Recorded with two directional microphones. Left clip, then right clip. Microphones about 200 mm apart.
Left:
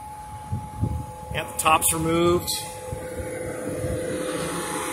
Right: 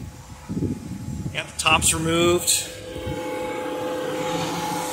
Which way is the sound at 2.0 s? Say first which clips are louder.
Right 1 dB; 5° right (ahead or behind).